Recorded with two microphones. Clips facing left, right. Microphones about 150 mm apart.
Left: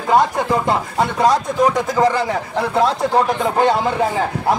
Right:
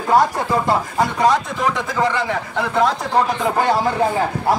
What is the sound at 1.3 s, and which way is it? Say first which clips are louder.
A man's voice: left 4 dB; 40° left (ahead or behind).